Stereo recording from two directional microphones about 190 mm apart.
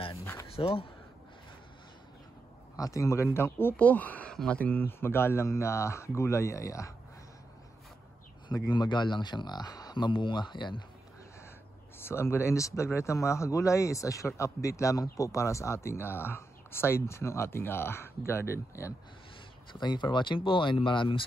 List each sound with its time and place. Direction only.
0.1 s a sound: 15° left (ahead or behind)
0.6 s speech: 30° left (ahead or behind)
2.7 s speech: 15° left (ahead or behind)
8.5 s speech: 20° left (ahead or behind)
12.0 s speech: 15° left (ahead or behind)